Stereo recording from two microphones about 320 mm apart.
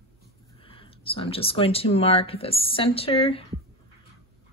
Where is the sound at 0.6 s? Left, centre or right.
Centre.